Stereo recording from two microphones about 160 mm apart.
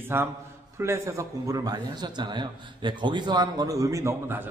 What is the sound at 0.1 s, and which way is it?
A man's voice, 15° right (ahead or behind).